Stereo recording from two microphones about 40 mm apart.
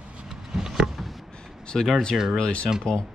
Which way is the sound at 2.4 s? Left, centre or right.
Left.